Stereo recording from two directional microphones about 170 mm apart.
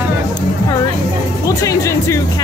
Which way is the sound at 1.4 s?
20° left (ahead or behind).